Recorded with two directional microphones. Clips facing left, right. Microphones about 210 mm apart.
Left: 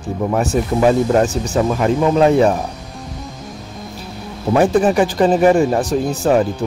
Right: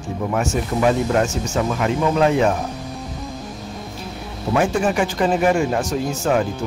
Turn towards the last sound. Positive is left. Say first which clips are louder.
# left 5 dB
turn(degrees=35)  # may be behind; listen again after turning